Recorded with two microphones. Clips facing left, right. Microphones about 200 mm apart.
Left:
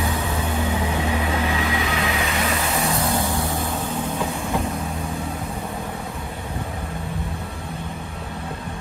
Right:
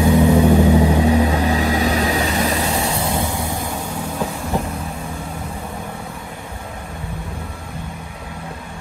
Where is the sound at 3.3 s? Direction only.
15° right (ahead or behind).